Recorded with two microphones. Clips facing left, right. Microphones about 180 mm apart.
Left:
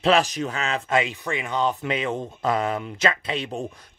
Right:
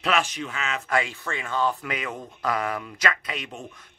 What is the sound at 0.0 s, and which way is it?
Speech, 35° left (ahead or behind).